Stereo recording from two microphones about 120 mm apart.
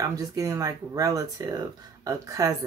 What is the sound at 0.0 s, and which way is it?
Speech, 30° right (ahead or behind).